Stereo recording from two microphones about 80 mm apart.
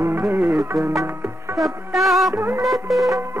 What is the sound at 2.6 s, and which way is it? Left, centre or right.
Music, centre.